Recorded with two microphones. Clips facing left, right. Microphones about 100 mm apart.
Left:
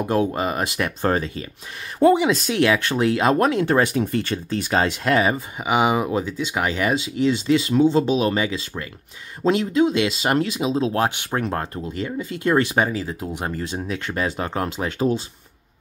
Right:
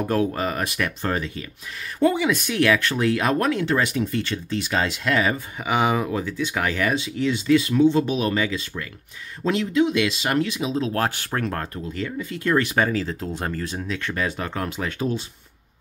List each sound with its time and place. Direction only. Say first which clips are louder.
0.1 s speech: left 3 dB; 20° left (ahead or behind)
3.6 s speech: left 3 dB; 40° left (ahead or behind)
5.1 s speech: left 3 dB; 25° left (ahead or behind)
5.6 s speech: left 2 dB; 15° left (ahead or behind)